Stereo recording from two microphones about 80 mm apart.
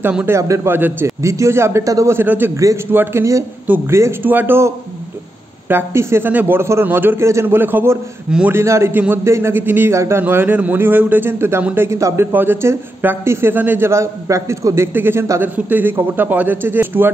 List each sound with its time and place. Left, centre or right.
0.3 s a man's voice: right
1.0 s speech: right
2.1 s a man's voice: right
2.5 s speech: right
2.9 s a man's voice: right
10.2 s a man's voice: right
12.3 s a man's voice: right
15.0 s a man's voice: right